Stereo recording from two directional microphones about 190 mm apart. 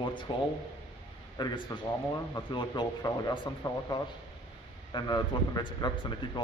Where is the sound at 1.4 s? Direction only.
20° left (ahead or behind).